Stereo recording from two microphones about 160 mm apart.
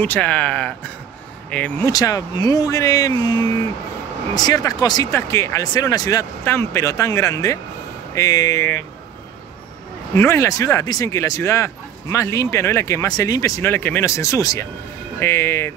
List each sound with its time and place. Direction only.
0.0 s speech: 10° left (ahead or behind)
1.9 s speech: 20° left (ahead or behind)
10.1 s speech: 15° left (ahead or behind)